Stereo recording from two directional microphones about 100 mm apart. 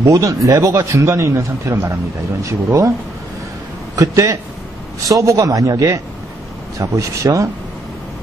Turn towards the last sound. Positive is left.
turn(degrees=-35)  # may be behind; listen again after turning